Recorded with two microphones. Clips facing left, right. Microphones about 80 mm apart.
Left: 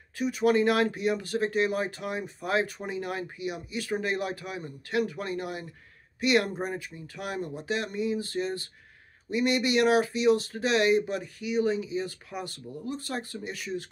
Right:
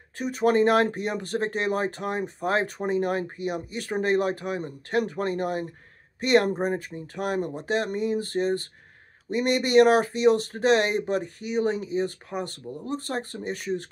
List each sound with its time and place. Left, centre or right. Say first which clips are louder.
0.2 s speech: right 2 dB; right
6.9 s speech: right 7 dB; right